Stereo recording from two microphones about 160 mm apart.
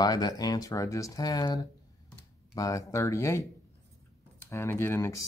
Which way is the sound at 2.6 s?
20° left (ahead or behind).